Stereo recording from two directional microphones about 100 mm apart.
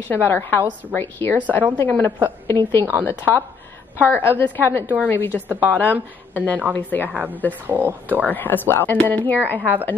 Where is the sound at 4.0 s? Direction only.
20° left (ahead or behind).